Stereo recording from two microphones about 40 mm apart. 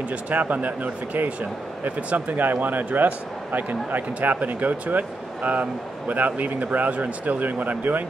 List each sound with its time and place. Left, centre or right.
0.3 s speech: right